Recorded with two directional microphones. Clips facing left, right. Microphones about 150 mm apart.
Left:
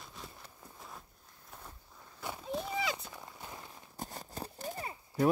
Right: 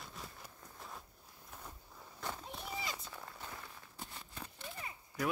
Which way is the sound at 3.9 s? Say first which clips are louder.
Left 8 dB; 40° left (ahead or behind).